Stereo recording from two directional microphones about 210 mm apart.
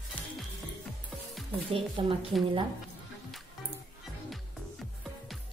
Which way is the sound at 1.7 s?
25° right (ahead or behind).